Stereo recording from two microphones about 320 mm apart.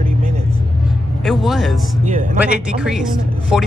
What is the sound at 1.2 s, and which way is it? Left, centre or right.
Speech, centre.